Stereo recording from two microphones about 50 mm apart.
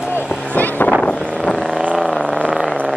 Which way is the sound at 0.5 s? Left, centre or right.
Left.